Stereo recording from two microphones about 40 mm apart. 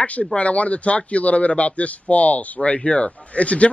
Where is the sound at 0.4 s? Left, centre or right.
Left.